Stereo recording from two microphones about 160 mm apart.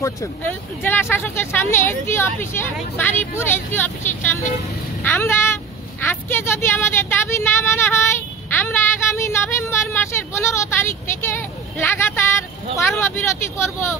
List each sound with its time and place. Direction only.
0.0 s speech: 15° left (ahead or behind)
5.0 s speech: 15° left (ahead or behind)
6.0 s vehicle: 15° left (ahead or behind)
12.7 s speech: 15° left (ahead or behind)